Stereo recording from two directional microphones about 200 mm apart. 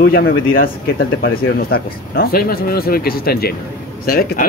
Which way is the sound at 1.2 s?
50° left (ahead or behind).